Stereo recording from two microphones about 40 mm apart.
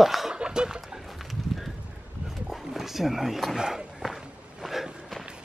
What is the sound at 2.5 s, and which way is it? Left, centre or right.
Wild animals, centre.